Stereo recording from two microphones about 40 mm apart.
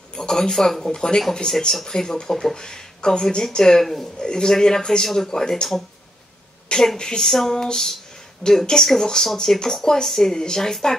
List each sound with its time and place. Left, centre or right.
0.1 s speech: centre
2.5 s speech: centre
3.8 s a man's voice: centre
4.2 s speech: centre
6.7 s a woman's voice: left
7.2 s speech: centre